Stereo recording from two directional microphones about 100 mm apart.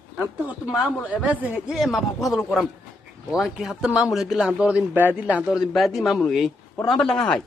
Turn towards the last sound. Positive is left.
turn(degrees=5)  # may be behind; listen again after turning